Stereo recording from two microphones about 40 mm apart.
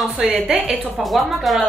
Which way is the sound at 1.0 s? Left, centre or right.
Centre.